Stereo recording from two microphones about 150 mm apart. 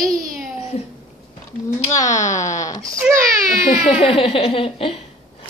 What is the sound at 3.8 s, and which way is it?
A woman's voice, 40° left (ahead or behind).